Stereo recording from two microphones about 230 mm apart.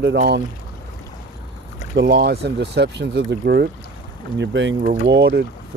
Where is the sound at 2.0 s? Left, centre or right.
Right.